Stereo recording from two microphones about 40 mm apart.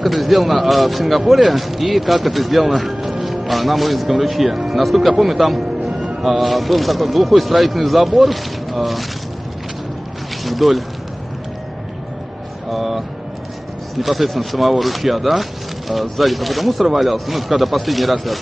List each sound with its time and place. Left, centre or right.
0.0 s a man's voice: centre
10.4 s speech: centre
12.6 s speech: centre